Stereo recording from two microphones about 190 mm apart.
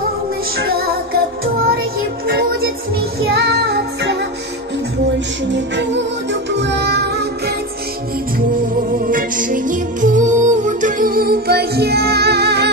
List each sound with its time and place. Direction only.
0.6 s music: 55° right (ahead or behind)
5.5 s music: 70° right (ahead or behind)
9.0 s music: 45° right (ahead or behind)